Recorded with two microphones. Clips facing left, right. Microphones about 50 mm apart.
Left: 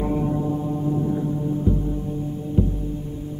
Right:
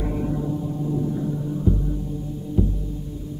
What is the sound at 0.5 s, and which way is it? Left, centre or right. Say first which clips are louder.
Gong: left 3 dB; left.